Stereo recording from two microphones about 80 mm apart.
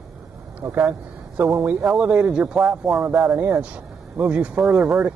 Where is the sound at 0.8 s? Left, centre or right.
Centre.